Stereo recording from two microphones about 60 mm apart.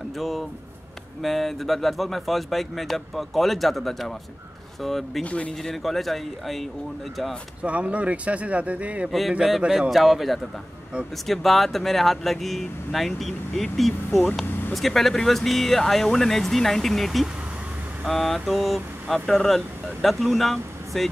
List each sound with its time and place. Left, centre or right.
0.2 s speech: centre
5.2 s speech: left
5.6 s speech: centre
7.6 s speech: right
9.7 s speech: centre